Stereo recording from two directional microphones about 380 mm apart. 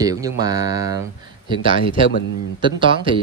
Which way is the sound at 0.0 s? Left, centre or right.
Centre.